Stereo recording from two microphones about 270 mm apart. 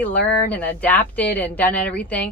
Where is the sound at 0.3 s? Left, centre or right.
Centre.